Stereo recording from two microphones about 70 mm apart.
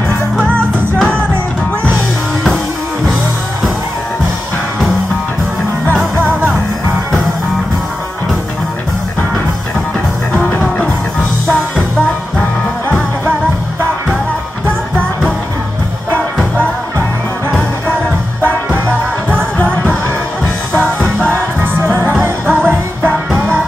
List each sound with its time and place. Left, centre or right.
0.9 s music: centre
19.3 s music: centre
21.8 s music: right